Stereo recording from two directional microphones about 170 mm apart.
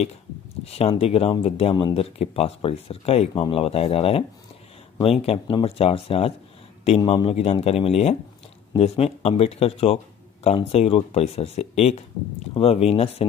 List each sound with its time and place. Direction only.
0.7 s speech: 35° left (ahead or behind)
5.2 s speech: 35° left (ahead or behind)